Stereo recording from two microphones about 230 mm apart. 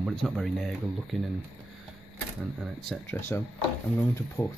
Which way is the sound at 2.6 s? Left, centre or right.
Centre.